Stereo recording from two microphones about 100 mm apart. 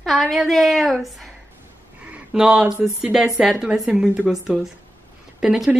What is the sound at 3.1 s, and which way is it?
Speech, 5° right (ahead or behind).